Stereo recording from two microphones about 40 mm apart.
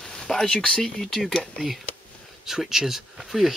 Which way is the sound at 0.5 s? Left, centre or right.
Left.